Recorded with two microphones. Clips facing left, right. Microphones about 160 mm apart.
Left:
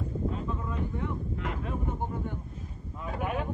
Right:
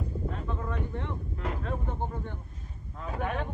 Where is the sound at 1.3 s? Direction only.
40° right (ahead or behind).